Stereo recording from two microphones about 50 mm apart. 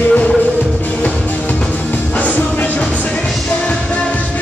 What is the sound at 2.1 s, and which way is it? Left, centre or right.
Music, left.